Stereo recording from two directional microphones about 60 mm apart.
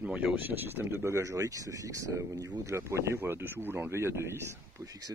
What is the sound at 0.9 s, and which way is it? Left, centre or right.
Speech, right.